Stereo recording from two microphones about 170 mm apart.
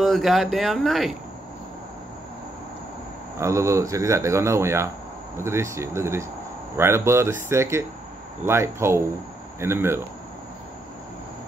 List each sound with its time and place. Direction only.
0.0 s speech: centre (ahead or behind)
3.3 s speech: 15° right (ahead or behind)